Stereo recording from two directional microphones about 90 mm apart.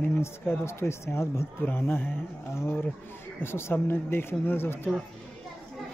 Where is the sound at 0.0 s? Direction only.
25° left (ahead or behind).